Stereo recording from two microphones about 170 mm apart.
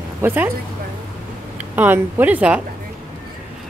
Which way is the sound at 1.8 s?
10° right (ahead or behind).